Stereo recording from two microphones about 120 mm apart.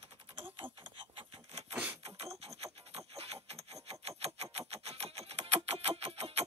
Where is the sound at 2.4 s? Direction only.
60° right (ahead or behind).